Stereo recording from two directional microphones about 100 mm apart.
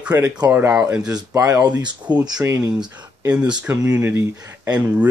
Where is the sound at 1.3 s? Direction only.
30° right (ahead or behind).